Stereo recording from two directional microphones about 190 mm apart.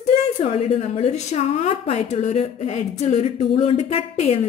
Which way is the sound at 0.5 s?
30° left (ahead or behind).